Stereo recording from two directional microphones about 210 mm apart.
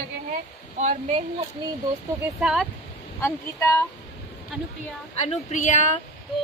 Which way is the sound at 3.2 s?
15° left (ahead or behind).